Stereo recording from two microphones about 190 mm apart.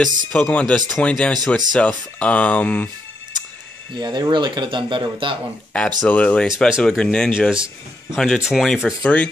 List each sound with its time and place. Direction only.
0.3 s a man's voice: 5° left (ahead or behind)
3.9 s speech: 20° right (ahead or behind)
5.7 s a man's voice: 5° left (ahead or behind)